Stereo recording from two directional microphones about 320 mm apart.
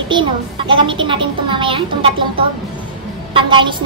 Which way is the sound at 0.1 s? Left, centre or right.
Centre.